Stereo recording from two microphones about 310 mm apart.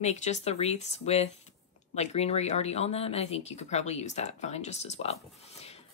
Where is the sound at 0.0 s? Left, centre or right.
Left.